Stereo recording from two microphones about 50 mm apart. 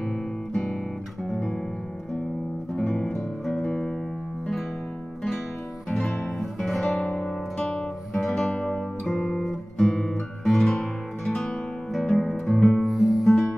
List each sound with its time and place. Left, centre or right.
3.6 s music: centre
6.4 s music: centre
6.9 s guitar: centre
7.2 s music: centre
8.5 s guitar: left
9.2 s guitar: centre
10.7 s music: centre